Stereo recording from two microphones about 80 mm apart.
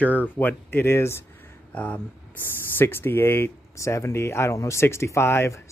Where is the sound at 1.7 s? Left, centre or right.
Centre.